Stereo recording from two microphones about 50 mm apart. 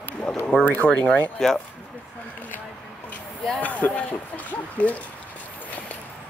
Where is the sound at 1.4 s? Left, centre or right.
Centre.